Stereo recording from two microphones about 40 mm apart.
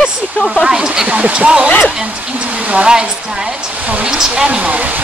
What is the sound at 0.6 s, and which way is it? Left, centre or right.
Speech, centre.